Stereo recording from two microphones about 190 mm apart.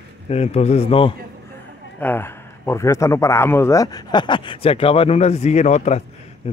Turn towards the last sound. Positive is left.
turn(degrees=35)  # may be behind; listen again after turning